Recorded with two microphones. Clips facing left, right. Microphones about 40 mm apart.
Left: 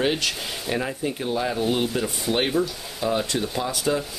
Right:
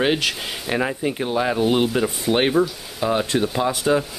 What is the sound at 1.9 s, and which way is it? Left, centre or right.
Sizzle, centre.